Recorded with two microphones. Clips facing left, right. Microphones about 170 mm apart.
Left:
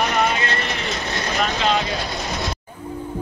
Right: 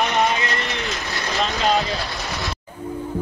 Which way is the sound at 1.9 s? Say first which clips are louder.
Left 2 dB; 20° left (ahead or behind).